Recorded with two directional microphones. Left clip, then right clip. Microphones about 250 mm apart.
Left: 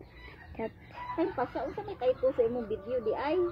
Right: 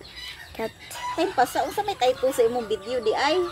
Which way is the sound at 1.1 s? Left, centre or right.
Right.